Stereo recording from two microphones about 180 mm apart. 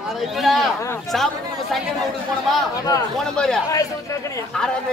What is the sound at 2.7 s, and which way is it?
Speech, 20° left (ahead or behind).